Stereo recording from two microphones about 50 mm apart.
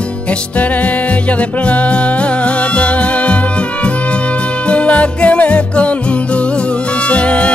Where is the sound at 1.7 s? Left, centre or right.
Left.